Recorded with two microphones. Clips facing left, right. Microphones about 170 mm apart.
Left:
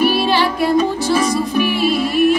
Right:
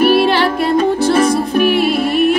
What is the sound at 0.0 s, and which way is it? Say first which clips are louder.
Music: right 4 dB; 55° right (ahead or behind).